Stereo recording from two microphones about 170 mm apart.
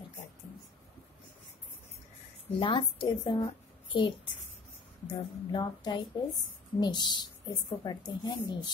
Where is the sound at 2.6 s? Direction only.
30° left (ahead or behind).